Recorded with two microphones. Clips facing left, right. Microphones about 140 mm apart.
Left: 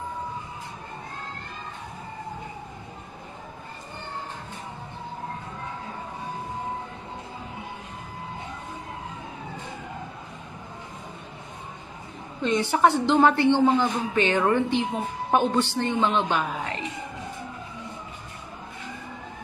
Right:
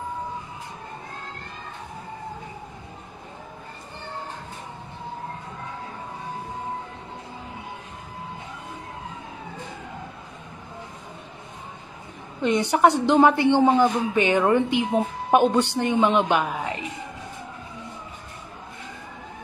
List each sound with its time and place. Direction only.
12.4 s speech: 15° right (ahead or behind)